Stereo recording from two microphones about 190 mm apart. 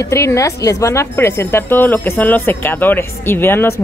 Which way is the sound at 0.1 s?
15° left (ahead or behind).